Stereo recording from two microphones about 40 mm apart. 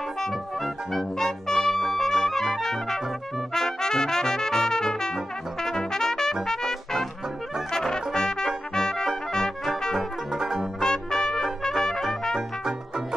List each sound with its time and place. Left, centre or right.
0.2 s brass instrument: centre
3.5 s trumpet: centre
9.9 s music: centre
10.8 s brass instrument: centre
11.6 s trumpet: centre
12.4 s music: centre